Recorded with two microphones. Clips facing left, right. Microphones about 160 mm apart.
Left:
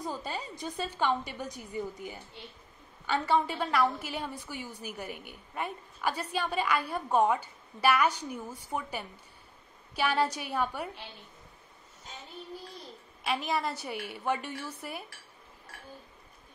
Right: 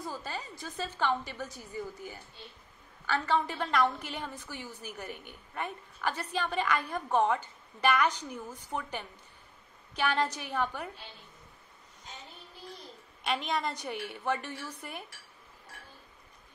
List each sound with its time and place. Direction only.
0.0 s a woman's voice: 15° left (ahead or behind)
13.2 s a woman's voice: 5° left (ahead or behind)